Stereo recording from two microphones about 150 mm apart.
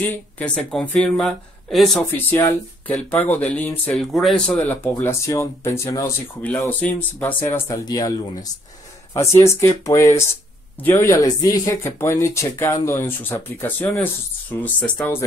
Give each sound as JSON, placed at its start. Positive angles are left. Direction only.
{"t": 0.1, "sound": "speech", "side_deg": 5}
{"t": 4.6, "sound": "speech", "side_deg": 10}